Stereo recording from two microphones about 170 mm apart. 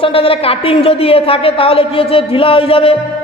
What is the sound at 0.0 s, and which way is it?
A man's voice, 35° left (ahead or behind).